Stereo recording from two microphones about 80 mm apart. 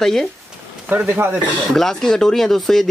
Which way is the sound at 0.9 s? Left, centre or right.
Right.